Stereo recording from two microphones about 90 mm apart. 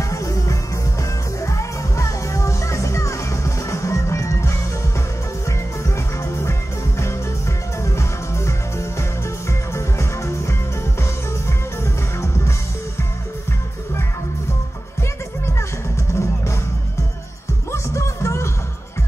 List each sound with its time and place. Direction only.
0.1 s music: 40° left (ahead or behind)
5.9 s music: 35° left (ahead or behind)
7.8 s music: 30° left (ahead or behind)
16.1 s music: 30° left (ahead or behind)
17.6 s music: 35° left (ahead or behind)